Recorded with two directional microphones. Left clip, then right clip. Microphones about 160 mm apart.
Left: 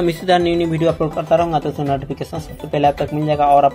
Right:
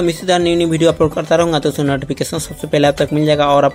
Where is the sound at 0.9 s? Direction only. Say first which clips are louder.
Right 3 dB; 55° right (ahead or behind).